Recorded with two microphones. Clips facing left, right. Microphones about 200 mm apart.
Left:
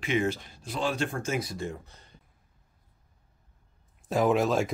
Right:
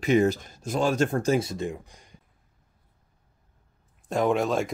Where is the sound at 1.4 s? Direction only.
20° right (ahead or behind).